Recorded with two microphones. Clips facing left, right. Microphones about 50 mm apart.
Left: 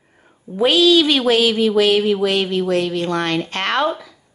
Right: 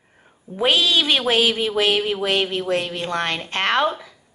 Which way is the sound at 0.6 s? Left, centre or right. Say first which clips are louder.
Left 5 dB; right.